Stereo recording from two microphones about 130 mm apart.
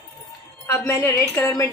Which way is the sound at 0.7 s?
20° left (ahead or behind).